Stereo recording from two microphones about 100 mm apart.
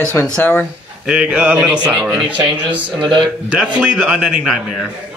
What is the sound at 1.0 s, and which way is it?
A man's voice, 10° right (ahead or behind).